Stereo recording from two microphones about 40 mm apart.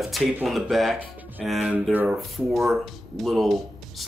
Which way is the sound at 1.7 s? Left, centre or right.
Right.